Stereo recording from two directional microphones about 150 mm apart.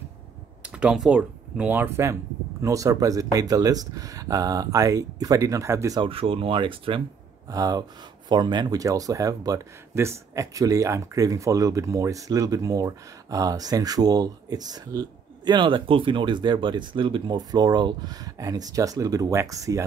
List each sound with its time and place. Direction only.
0.6 s speech: 5° right (ahead or behind)
5.9 s speech: 35° right (ahead or behind)
7.4 s speech: 25° right (ahead or behind)